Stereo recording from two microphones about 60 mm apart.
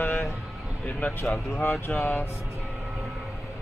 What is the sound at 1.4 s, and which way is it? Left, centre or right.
Speech, left.